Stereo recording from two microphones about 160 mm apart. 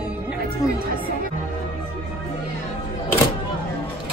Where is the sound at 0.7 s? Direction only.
65° right (ahead or behind).